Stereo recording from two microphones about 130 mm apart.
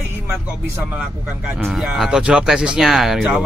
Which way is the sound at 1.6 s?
Centre (ahead or behind).